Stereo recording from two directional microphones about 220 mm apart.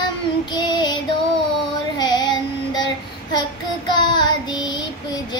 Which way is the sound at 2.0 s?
20° left (ahead or behind).